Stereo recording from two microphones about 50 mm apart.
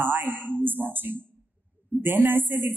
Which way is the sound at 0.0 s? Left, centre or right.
Right.